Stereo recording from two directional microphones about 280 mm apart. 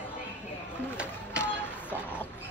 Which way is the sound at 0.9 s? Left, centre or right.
Centre.